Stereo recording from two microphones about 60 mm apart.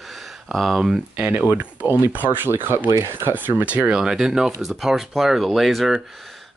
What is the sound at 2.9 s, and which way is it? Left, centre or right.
Speech, right.